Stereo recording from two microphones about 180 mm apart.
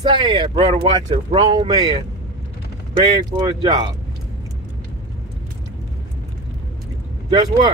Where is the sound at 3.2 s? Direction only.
25° right (ahead or behind).